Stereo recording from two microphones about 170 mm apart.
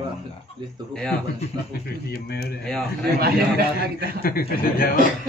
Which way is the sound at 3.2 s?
65° right (ahead or behind).